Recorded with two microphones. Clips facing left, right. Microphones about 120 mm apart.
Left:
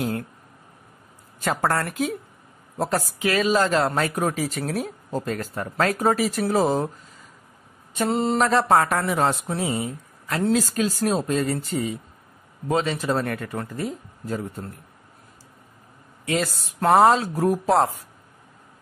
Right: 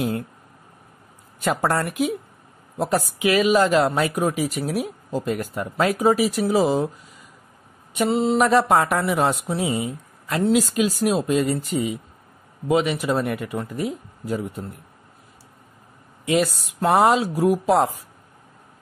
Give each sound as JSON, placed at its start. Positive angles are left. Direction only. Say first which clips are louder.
{"t": 0.0, "sound": "a sound", "louder": "right 2 dB", "side_deg": -20}
{"t": 1.4, "sound": "a woman's voice", "louder": "right 2 dB", "side_deg": -15}
{"t": 8.1, "sound": "speech", "louder": "right 2 dB", "side_deg": 0}
{"t": 8.5, "sound": "a woman's voice", "louder": "right 1 dB", "side_deg": -15}
{"t": 17.0, "sound": "a woman's voice", "louder": "even", "side_deg": -10}